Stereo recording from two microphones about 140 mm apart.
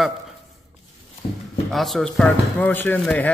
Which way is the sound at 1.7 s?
Centre (ahead or behind).